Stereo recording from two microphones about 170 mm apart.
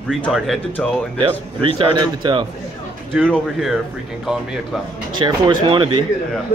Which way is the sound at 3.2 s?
5° left (ahead or behind).